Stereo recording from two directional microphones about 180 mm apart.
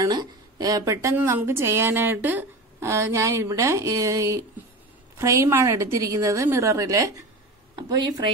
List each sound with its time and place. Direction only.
0.0 s a woman's voice: 20° right (ahead or behind)